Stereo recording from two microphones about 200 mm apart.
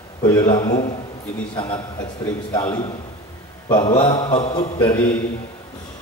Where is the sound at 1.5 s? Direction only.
25° left (ahead or behind).